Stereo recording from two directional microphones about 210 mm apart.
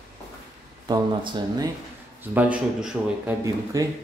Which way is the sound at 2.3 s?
5° right (ahead or behind).